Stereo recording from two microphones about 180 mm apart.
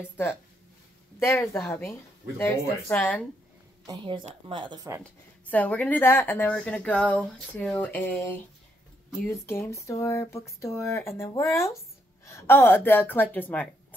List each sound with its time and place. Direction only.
1.2 s speech: 15° left (ahead or behind)
3.8 s speech: 25° right (ahead or behind)
5.5 s speech: 10° left (ahead or behind)